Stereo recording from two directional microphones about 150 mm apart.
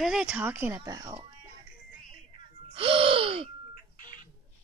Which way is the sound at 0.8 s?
25° right (ahead or behind).